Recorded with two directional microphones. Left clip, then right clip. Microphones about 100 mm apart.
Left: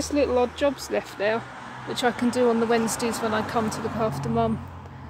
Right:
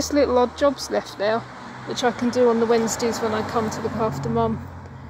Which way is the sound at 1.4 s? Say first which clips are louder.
Right 1 dB; 20° right (ahead or behind).